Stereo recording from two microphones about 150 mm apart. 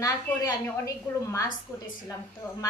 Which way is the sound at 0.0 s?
20° left (ahead or behind).